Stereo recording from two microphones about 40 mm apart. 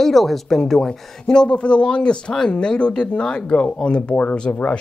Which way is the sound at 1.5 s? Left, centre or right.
Left.